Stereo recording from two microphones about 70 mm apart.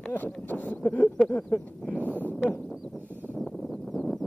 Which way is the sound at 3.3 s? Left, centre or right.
Centre.